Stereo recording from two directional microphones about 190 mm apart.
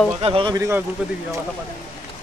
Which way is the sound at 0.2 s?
30° right (ahead or behind).